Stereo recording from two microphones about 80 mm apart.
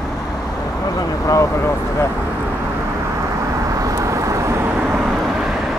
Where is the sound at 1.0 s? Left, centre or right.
Left.